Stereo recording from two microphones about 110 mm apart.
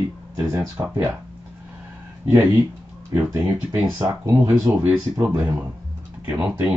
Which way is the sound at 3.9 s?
30° right (ahead or behind).